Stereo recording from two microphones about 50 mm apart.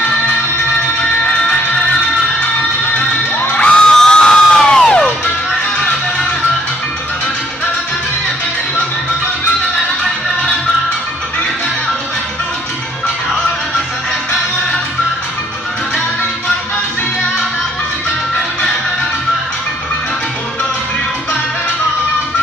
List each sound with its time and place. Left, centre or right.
3.5 s music: centre